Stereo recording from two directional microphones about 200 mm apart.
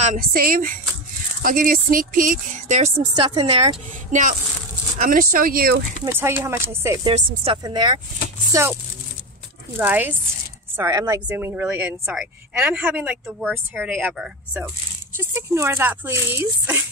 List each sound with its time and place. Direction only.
0.0 s speech: 45° right (ahead or behind)
3.2 s a woman's voice: 20° right (ahead or behind); by 5.8 s 50° right (ahead or behind)
6.0 s a woman's voice: 10° right (ahead or behind)
7.1 s a woman's voice: 30° right (ahead or behind)
9.8 s a woman's voice: 10° right (ahead or behind)